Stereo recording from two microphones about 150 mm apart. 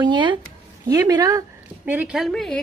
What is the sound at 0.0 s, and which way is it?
A woman's voice, 30° right (ahead or behind).